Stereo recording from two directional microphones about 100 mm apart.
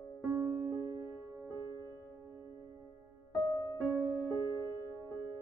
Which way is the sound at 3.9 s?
20° right (ahead or behind).